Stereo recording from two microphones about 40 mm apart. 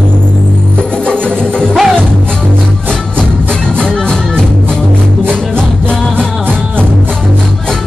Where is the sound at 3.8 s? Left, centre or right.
Centre.